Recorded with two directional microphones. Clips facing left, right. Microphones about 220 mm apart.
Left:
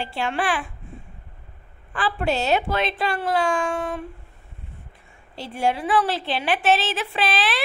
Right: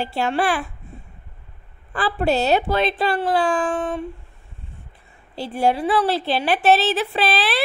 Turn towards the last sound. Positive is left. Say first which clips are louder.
# right 3 dB
turn(degrees=-35)  # may be behind; listen again after turning